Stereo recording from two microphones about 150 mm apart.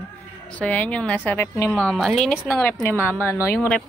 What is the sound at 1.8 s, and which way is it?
Speech, 5° left (ahead or behind).